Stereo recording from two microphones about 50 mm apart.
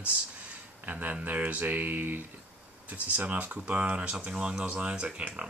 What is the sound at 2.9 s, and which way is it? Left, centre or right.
Speech, right.